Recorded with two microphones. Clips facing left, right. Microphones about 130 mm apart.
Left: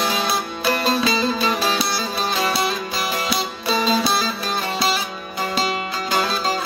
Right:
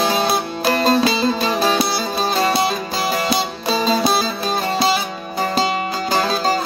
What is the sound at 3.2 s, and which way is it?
Music, 40° right (ahead or behind).